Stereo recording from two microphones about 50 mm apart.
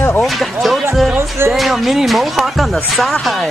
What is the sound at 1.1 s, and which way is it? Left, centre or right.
Speech, right.